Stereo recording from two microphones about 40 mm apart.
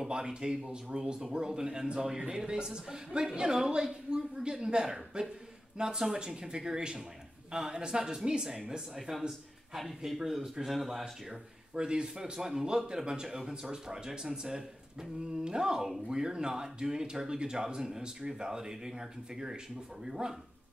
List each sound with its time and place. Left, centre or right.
0.0 s a man's voice: right
9.8 s speech: centre
11.7 s a man's voice: right